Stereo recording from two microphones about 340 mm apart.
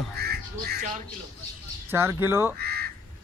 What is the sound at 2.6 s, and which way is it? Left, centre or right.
Crow, right.